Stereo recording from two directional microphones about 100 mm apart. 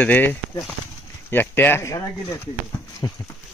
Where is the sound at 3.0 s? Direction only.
40° left (ahead or behind).